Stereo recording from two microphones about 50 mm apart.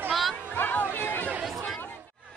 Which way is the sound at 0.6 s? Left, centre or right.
Left.